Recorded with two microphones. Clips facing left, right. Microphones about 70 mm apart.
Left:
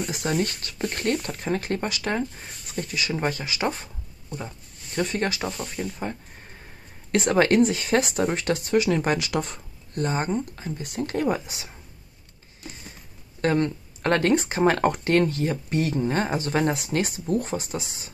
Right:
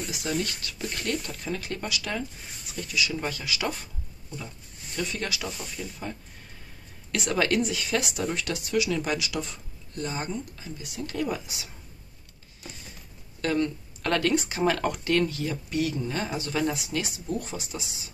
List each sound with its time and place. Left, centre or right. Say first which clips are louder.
0.1 s speech: left 3 dB; left
13.4 s speech: left 4 dB; left